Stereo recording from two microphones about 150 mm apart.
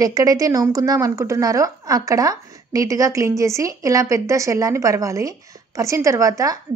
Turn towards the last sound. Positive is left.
turn(degrees=-20)  # may be behind; listen again after turning